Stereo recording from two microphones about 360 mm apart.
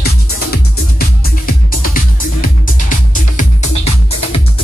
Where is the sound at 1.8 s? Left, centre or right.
Left.